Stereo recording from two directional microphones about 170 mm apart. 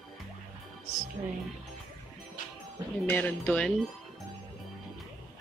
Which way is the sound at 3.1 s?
10° left (ahead or behind).